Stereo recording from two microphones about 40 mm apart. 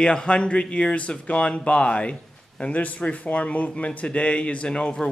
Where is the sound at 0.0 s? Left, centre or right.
Left.